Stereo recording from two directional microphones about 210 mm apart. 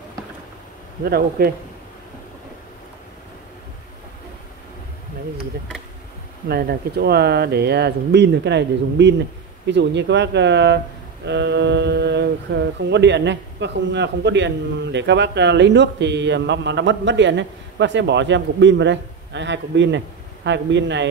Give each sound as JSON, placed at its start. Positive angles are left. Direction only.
{"t": 1.0, "sound": "speech", "side_deg": -45}
{"t": 6.5, "sound": "speech", "side_deg": -50}